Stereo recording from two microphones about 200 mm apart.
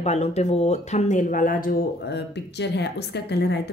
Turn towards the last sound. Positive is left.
turn(degrees=55)  # may be behind; listen again after turning